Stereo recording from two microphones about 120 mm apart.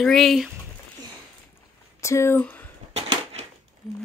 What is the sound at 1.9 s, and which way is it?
Speech, 25° left (ahead or behind).